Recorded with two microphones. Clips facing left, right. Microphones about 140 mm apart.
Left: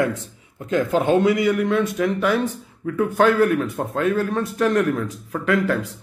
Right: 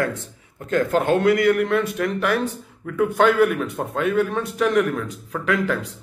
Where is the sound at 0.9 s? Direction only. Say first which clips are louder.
Left 1 dB; centre (ahead or behind).